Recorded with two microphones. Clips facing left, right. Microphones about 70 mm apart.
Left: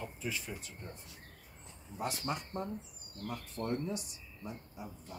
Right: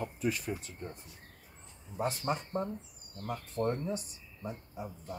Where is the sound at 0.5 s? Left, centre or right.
Right.